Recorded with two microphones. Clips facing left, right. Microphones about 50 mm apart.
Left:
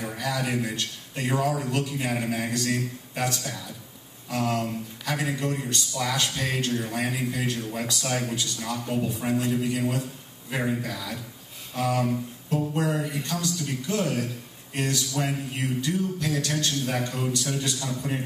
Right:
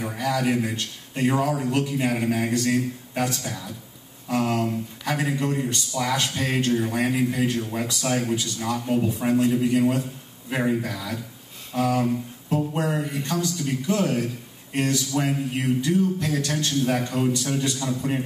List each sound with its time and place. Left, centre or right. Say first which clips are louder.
0.0 s a man's voice: right 4 dB; centre
11.7 s a sound: right 3 dB; right
12.4 s speech: right 2 dB; right